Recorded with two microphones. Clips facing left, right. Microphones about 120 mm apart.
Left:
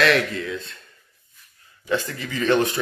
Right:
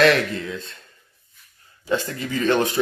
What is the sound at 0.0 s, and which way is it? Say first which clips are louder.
Speech: right 2 dB; 30° right (ahead or behind).